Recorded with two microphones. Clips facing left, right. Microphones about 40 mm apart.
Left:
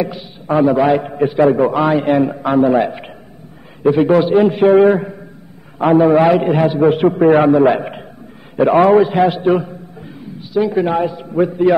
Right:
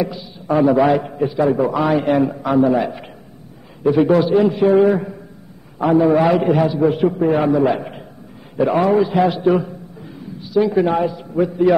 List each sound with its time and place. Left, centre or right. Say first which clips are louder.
0.5 s a man's voice: left 1 dB; centre
1.2 s a man's voice: left 6 dB; left
1.9 s a man's voice: left 2 dB; centre
2.4 s a man's voice: left 4 dB; left
6.1 s a man's voice: left 3 dB; left
6.7 s a man's voice: left 4 dB; left
8.5 s a man's voice: left 5 dB; left
9.2 s a man's voice: left 2 dB; left
10.7 s a man's voice: left 1 dB; centre
11.1 s a man's voice: left 3 dB; left